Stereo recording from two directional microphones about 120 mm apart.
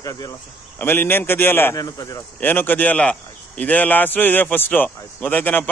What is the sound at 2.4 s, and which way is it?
A man's voice, 15° left (ahead or behind).